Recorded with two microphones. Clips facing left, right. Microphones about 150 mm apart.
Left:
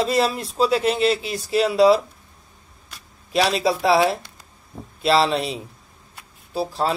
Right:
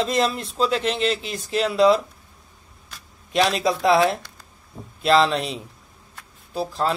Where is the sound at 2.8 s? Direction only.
5° left (ahead or behind).